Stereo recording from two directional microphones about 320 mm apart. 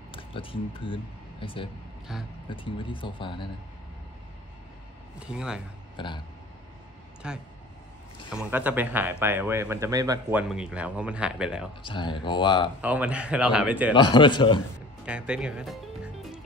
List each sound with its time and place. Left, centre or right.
0.1 s speech: centre
2.1 s a man's voice: centre
2.5 s speech: centre
5.2 s a man's voice: centre
5.9 s speech: centre
7.2 s a man's voice: centre
8.5 s a man's voice: centre
11.8 s speech: centre
12.8 s a man's voice: centre
13.9 s speech: centre
15.0 s speech: centre